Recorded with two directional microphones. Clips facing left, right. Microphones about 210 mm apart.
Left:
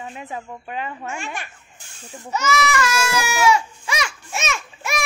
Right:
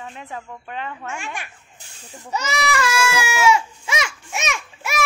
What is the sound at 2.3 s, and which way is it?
Goat, 30° right (ahead or behind).